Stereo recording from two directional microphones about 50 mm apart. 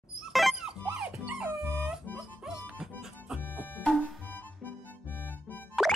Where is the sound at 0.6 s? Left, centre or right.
Centre.